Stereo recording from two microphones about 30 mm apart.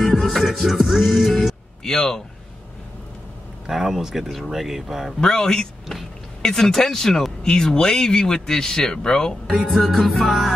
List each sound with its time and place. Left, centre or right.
0.2 s music: centre
0.8 s music: centre
1.8 s speech: centre
3.6 s music: centre
5.2 s speech: left
7.4 s speech: left
9.5 s music: centre
9.9 s music: centre